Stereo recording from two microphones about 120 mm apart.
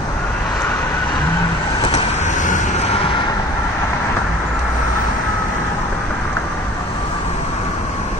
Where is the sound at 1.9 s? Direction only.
85° left.